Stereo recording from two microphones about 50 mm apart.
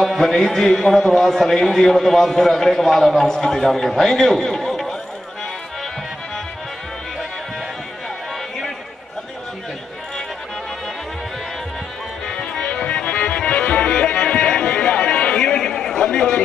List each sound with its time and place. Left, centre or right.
0.0 s a man's voice: centre
12.7 s music: left